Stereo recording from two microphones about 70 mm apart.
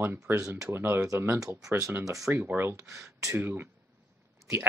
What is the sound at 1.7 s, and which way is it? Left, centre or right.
Speech, right.